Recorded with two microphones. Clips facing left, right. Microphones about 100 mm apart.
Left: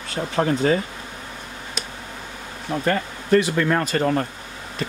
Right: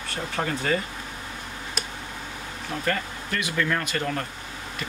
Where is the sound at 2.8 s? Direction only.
30° left (ahead or behind).